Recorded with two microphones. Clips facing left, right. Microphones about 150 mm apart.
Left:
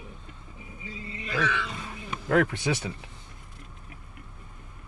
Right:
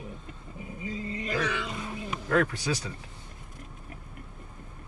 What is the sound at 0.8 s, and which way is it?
Music, 40° right (ahead or behind).